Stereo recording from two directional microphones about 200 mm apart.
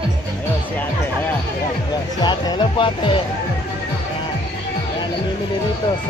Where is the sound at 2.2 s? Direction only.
20° left (ahead or behind).